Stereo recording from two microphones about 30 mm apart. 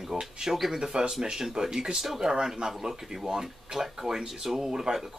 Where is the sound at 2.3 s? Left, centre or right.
Right.